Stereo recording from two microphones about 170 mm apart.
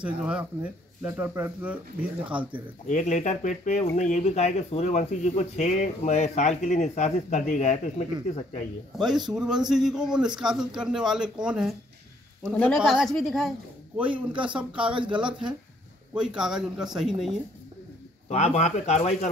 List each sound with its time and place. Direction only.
0.0 s speech: 10° right (ahead or behind)
2.9 s speech: 45° left (ahead or behind)
8.9 s speech: centre (ahead or behind)
14.8 s speech: 30° right (ahead or behind)
15.1 s speech: 5° right (ahead or behind)
18.3 s speech: 45° left (ahead or behind)